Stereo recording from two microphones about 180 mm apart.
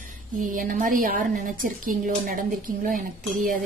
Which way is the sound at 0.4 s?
50° right (ahead or behind).